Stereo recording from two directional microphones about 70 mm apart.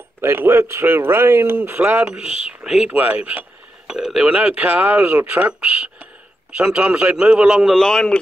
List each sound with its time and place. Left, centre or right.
0.2 s speech: right
0.8 s speech: right
2.1 s a man's voice: centre
2.9 s speech: right; by 4.3 s centre
4.3 s a man's voice: centre
7.7 s a man's voice: centre